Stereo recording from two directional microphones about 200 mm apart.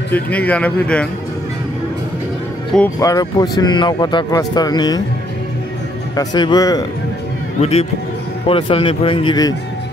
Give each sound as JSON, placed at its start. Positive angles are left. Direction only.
{"t": 0.1, "sound": "speech", "side_deg": 5}
{"t": 3.0, "sound": "speech", "side_deg": 20}
{"t": 6.1, "sound": "speech", "side_deg": 20}
{"t": 8.5, "sound": "speech", "side_deg": 25}